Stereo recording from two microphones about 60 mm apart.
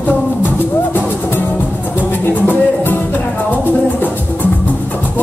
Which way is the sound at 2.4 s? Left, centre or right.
Left.